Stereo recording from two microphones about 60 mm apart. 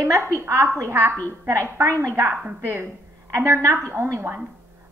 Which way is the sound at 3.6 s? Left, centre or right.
Right.